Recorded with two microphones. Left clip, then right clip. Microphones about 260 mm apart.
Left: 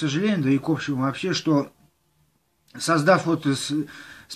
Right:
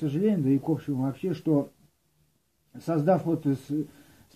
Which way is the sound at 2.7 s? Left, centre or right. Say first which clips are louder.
Left 6 dB; centre.